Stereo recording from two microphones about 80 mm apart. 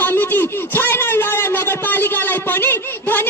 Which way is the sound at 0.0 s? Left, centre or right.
Left.